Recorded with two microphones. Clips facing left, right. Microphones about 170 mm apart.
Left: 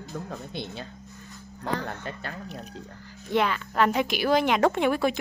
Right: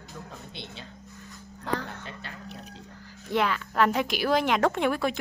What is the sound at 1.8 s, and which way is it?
Speech, 50° left (ahead or behind).